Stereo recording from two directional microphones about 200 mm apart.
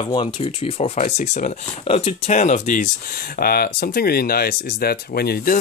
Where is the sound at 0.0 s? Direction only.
25° left (ahead or behind).